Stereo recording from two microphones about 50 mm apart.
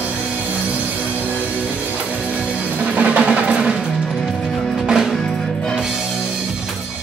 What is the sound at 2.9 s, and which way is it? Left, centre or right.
Music, right.